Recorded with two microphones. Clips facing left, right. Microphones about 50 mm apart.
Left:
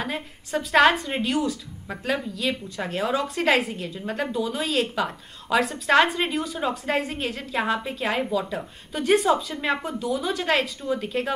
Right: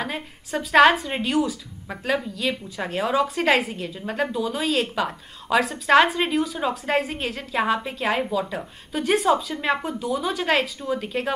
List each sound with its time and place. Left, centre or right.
0.0 s speech: centre